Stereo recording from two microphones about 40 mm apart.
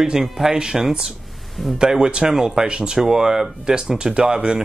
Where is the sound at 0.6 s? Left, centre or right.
Centre.